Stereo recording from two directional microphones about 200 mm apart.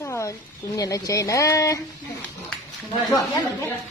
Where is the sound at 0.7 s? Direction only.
15° left (ahead or behind).